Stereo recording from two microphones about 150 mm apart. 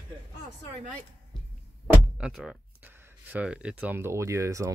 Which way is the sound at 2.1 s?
5° right (ahead or behind).